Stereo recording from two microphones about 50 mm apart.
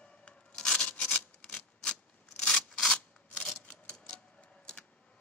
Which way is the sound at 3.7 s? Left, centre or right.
Left.